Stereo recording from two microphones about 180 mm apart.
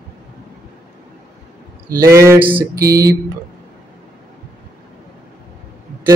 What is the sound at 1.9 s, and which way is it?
Mantra, 15° right (ahead or behind).